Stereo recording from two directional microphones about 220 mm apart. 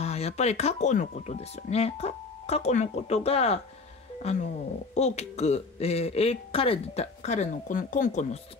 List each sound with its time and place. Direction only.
0.0 s speech: 30° left (ahead or behind)